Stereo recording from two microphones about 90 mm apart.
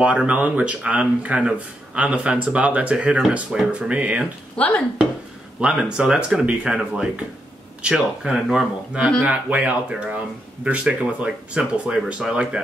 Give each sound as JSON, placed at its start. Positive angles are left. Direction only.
{"t": 0.3, "sound": "speech", "side_deg": -15}
{"t": 4.6, "sound": "speech", "side_deg": 15}
{"t": 5.6, "sound": "speech", "side_deg": -10}
{"t": 9.2, "sound": "speech", "side_deg": -15}